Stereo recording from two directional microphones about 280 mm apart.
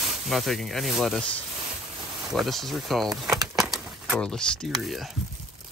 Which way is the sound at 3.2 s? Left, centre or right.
Centre.